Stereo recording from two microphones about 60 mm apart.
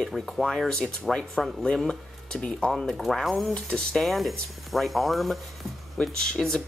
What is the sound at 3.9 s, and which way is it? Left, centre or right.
Speech, centre.